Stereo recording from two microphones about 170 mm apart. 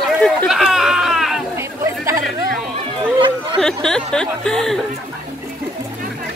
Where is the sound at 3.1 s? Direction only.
30° right (ahead or behind).